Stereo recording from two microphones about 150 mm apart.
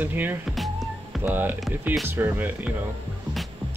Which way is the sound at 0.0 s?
15° right (ahead or behind).